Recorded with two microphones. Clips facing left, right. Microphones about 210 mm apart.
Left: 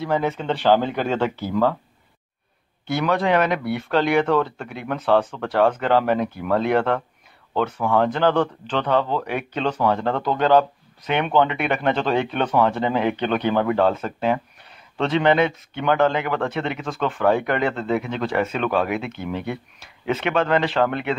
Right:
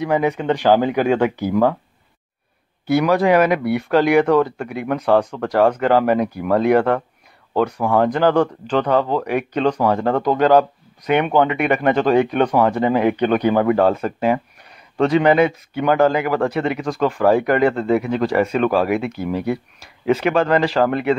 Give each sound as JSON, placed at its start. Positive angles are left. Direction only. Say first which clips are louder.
{"t": 0.0, "sound": "speech", "louder": "right 4 dB", "side_deg": -15}
{"t": 2.9, "sound": "a man's voice", "louder": "right 5 dB", "side_deg": -5}